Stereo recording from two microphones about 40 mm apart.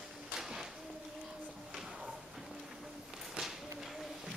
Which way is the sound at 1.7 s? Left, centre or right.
Centre.